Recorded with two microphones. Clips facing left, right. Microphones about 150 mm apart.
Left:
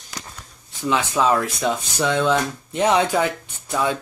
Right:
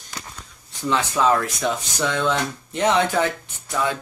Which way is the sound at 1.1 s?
10° left (ahead or behind).